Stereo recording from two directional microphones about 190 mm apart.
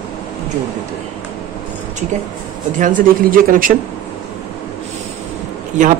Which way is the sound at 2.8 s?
45° right (ahead or behind).